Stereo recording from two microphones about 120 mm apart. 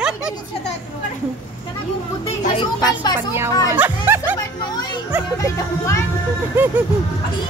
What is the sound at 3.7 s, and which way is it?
Music, 15° right (ahead or behind).